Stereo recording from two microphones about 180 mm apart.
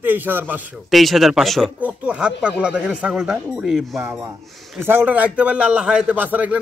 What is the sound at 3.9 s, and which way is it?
A man's voice, 15° right (ahead or behind).